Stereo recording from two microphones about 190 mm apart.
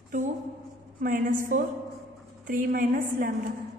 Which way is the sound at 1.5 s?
45° right (ahead or behind).